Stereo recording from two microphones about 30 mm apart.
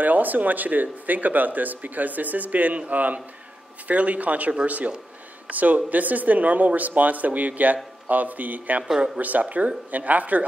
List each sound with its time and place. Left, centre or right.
0.0 s speech: right